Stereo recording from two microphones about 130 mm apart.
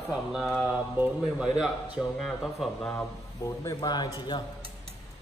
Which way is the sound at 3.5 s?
30° left (ahead or behind).